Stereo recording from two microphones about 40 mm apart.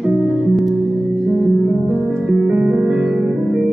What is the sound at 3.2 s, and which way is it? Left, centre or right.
Music, centre.